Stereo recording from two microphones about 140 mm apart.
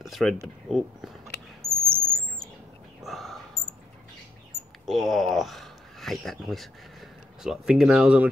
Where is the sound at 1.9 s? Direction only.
40° right (ahead or behind).